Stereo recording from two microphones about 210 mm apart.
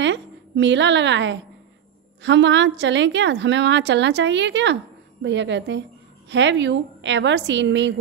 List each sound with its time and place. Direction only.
0.0 s a woman's voice: 60° right (ahead or behind)